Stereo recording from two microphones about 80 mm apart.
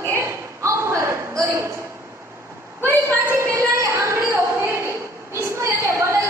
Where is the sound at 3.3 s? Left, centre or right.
Right.